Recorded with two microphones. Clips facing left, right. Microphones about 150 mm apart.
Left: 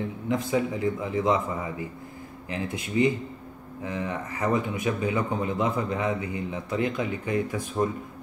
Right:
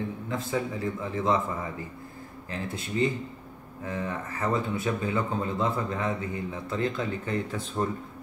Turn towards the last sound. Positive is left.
turn(degrees=10)  # may be behind; listen again after turning